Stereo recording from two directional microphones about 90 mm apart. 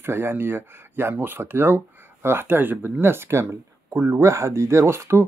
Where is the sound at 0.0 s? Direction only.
25° right (ahead or behind).